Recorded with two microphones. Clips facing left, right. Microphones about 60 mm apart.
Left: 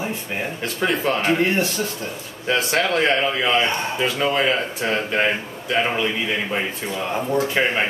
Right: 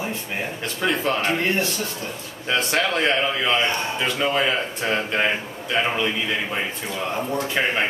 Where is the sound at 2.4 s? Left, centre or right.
Centre.